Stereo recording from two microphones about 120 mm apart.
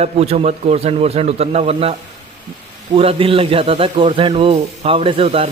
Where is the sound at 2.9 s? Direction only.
50° right (ahead or behind).